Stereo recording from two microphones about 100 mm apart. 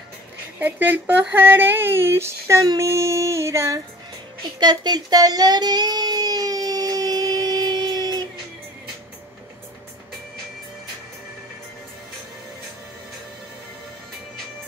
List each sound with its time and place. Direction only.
0.6 s speech: 20° right (ahead or behind)
2.6 s speech: 40° right (ahead or behind)
2.9 s speech: 30° right (ahead or behind)
4.6 s a sound: 45° right (ahead or behind)